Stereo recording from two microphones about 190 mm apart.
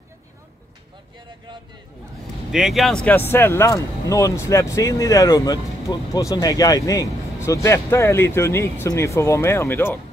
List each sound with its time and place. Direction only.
2.5 s speech: centre (ahead or behind)